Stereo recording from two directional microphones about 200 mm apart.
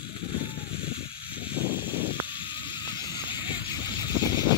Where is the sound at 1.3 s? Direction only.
10° right (ahead or behind).